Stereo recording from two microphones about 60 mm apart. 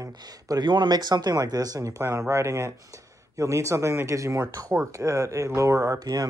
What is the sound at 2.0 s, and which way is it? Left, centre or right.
Speech, right.